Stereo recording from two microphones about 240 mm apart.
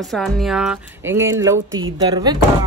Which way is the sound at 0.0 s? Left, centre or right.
Centre.